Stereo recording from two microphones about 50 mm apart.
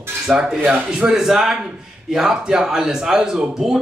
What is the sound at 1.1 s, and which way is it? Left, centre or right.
Speech, centre.